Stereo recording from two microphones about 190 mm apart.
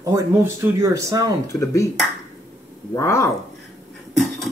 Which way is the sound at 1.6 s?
15° left (ahead or behind).